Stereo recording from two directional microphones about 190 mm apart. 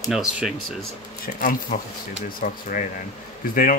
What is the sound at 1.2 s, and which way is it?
A man's voice, 50° left (ahead or behind).